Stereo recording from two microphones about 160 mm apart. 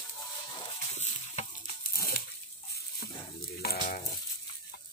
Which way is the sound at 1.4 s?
45° left (ahead or behind).